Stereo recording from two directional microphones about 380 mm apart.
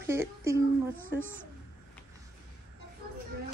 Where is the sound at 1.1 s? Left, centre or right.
Centre.